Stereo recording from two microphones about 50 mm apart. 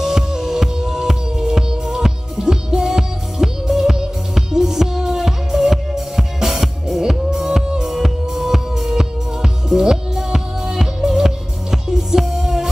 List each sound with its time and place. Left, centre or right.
0.0 s music: centre